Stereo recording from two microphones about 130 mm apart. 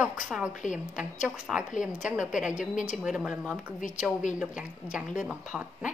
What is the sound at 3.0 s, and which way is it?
Speech, 5° right (ahead or behind).